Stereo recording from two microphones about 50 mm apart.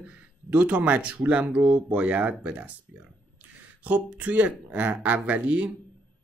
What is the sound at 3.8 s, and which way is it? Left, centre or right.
Speech, right.